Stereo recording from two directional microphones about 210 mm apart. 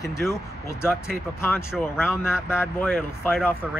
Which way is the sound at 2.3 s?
10° left (ahead or behind).